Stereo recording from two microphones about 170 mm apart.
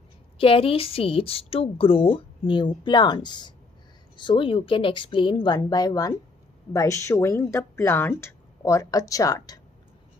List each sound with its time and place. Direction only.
0.4 s a woman's voice: 35° left (ahead or behind)